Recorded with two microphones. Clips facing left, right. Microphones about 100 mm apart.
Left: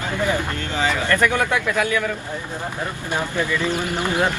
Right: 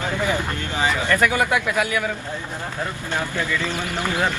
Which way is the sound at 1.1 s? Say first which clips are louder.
Even; 10° right (ahead or behind).